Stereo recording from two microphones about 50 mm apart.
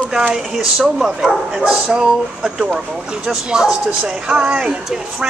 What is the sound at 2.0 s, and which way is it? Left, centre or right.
A woman's voice, centre.